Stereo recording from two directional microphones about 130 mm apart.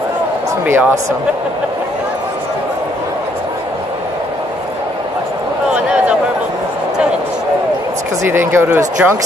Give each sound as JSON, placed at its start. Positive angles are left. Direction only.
{"t": 0.7, "sound": "speech", "side_deg": -15}
{"t": 8.3, "sound": "speech", "side_deg": -20}